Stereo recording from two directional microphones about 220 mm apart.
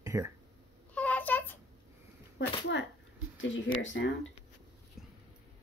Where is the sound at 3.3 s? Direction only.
60° left (ahead or behind).